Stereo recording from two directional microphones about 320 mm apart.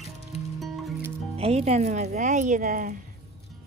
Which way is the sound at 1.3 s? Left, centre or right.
Centre.